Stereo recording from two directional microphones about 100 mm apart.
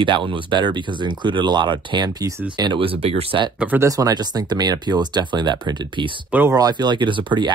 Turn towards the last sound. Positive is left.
turn(degrees=-50)  # may be behind; listen again after turning